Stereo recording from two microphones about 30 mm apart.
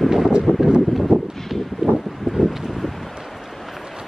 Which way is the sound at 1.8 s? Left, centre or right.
Right.